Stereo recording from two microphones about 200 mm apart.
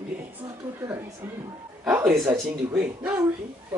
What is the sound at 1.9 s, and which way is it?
A woman's voice, 10° right (ahead or behind).